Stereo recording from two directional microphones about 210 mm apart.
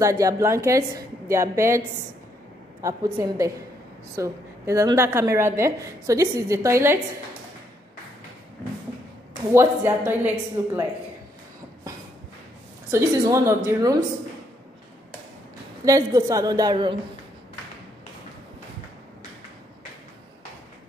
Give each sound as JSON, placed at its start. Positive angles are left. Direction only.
{"t": 0.0, "sound": "a woman's voice", "side_deg": -15}
{"t": 2.8, "sound": "a woman's voice", "side_deg": -15}
{"t": 9.5, "sound": "a woman's voice", "side_deg": -10}
{"t": 12.9, "sound": "a woman's voice", "side_deg": -15}
{"t": 15.8, "sound": "a woman's voice", "side_deg": -15}